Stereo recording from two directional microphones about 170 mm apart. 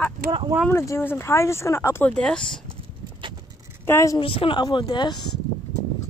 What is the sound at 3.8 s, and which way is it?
Speech, 15° left (ahead or behind).